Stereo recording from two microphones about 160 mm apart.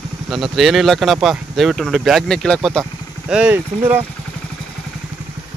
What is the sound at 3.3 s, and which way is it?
Speech, 10° right (ahead or behind).